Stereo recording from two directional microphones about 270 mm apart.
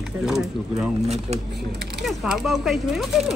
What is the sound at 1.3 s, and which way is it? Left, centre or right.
Speech, right.